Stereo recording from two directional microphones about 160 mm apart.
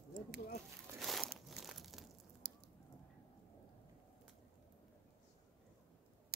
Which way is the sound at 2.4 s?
90° right.